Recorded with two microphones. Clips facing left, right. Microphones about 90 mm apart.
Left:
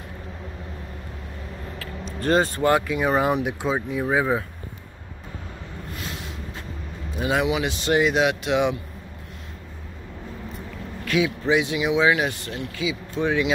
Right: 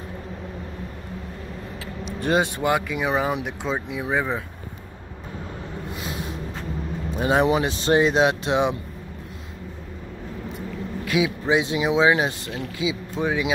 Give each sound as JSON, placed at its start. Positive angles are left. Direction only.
{"t": 1.8, "sound": "speech", "side_deg": -15}
{"t": 6.0, "sound": "a sound", "side_deg": -20}
{"t": 7.2, "sound": "speech", "side_deg": -35}
{"t": 11.1, "sound": "speech", "side_deg": -20}